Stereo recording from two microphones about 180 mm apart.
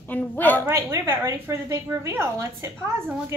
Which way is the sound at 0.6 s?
15° right (ahead or behind).